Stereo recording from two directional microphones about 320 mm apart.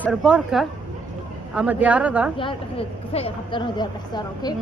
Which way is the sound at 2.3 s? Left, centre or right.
Centre.